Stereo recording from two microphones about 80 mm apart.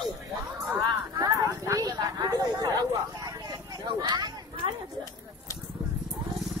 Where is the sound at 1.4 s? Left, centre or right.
Right.